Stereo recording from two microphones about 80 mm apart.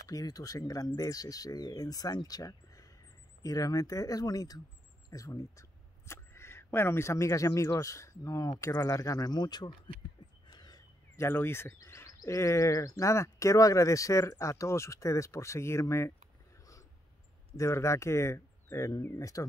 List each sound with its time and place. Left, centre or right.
0.1 s speech: left
10.5 s a sound: left
11.1 s speech: left
17.6 s speech: left